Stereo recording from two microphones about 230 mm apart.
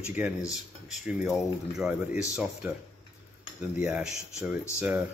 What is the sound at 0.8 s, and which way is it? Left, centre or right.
Speech, centre.